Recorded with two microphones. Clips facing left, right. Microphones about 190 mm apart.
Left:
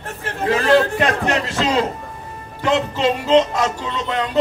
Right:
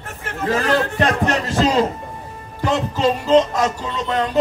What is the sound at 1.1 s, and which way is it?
Music, 40° right (ahead or behind).